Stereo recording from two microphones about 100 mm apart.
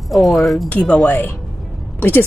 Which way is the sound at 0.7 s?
15° left (ahead or behind).